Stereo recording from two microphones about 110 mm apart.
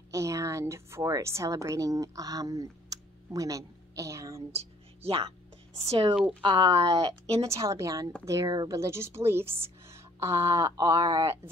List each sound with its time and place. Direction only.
0.1 s a woman's voice: 30° right (ahead or behind)
4.5 s speech: 65° right (ahead or behind); by 7.2 s 40° right (ahead or behind)
7.4 s speech: 30° right (ahead or behind)